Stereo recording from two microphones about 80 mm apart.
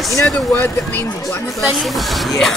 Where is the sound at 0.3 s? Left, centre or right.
Left.